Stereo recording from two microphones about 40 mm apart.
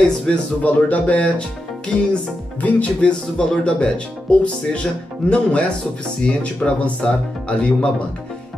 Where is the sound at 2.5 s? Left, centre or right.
Left.